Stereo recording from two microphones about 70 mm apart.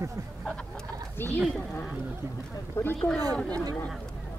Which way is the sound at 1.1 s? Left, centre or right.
Left.